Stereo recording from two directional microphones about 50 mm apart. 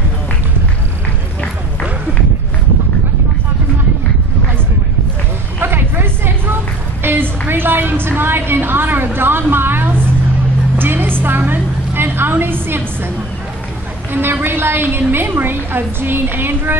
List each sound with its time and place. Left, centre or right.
5.6 s vehicle: right
7.0 s a sound: right
14.1 s a woman's voice: right